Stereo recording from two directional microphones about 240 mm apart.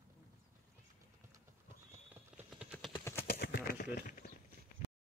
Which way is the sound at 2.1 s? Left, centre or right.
Centre.